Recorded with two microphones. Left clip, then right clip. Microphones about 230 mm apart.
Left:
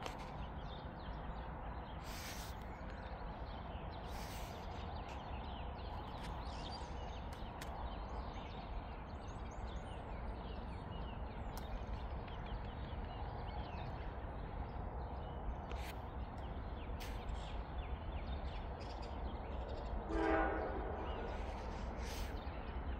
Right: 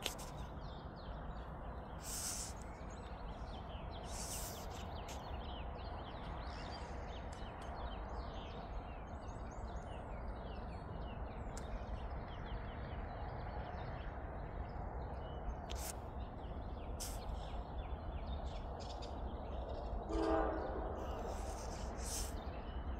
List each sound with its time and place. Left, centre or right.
20.1 s train: centre